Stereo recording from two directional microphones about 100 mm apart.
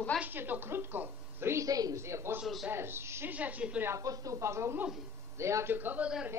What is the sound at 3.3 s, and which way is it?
Speech, 15° right (ahead or behind).